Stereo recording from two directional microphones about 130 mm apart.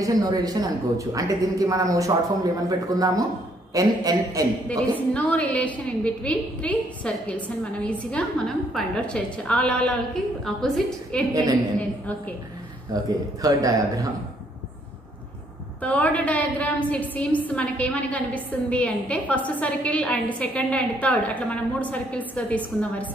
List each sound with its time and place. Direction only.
0.0 s speech: 30° right (ahead or behind)
4.6 s a woman's voice: 10° left (ahead or behind)
12.9 s speech: 30° right (ahead or behind)
15.8 s a woman's voice: 10° left (ahead or behind)